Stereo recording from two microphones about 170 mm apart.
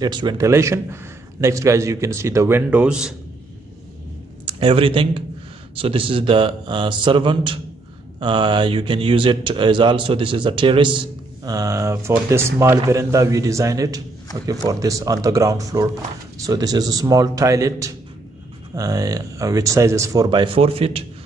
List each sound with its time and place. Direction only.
0.0 s a man's voice: 25° right (ahead or behind); by 3.2 s 5° right (ahead or behind)
4.5 s speech: 35° right (ahead or behind)